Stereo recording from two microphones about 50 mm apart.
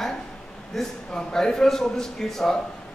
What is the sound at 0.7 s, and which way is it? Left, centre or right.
A man's voice, centre.